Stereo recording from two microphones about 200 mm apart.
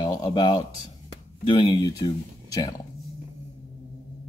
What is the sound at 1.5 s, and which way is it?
A man's voice, 20° left (ahead or behind).